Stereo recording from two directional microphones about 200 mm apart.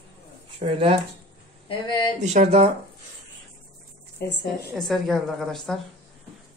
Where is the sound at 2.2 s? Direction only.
35° right (ahead or behind).